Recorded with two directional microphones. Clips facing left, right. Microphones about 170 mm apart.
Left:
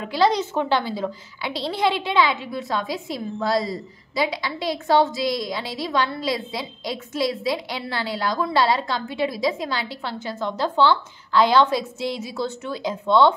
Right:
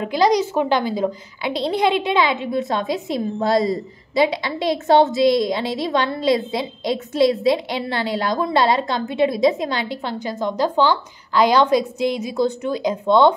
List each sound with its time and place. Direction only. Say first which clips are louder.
0.0 s a woman's voice: right 3 dB; 15° right (ahead or behind)